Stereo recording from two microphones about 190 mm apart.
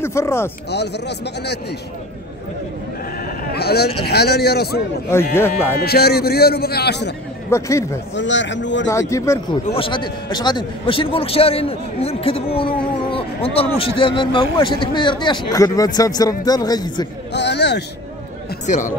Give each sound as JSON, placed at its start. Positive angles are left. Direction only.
{"t": 0.0, "sound": "speech", "side_deg": 15}
{"t": 0.7, "sound": "a man's voice", "side_deg": 60}
{"t": 3.5, "sound": "a man's voice", "side_deg": 55}
{"t": 5.3, "sound": "speech", "side_deg": 10}
{"t": 5.8, "sound": "a man's voice", "side_deg": 55}
{"t": 7.5, "sound": "speech", "side_deg": 15}
{"t": 8.1, "sound": "speech", "side_deg": 70}
{"t": 8.8, "sound": "speech", "side_deg": 15}
{"t": 9.7, "sound": "speech", "side_deg": 30}
{"t": 17.3, "sound": "a man's voice", "side_deg": 65}